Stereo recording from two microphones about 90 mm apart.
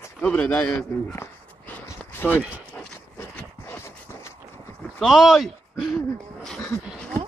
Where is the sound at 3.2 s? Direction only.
30° left (ahead or behind).